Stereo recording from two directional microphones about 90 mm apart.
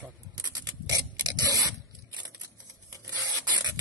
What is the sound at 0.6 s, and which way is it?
Mechanisms, 45° right (ahead or behind).